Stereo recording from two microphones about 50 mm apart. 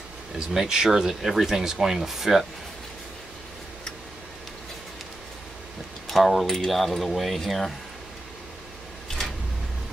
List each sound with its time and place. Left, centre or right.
0.4 s speech: centre
6.0 s speech: centre